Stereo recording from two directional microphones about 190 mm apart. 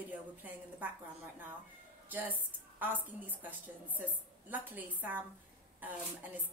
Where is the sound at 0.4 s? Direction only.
10° right (ahead or behind).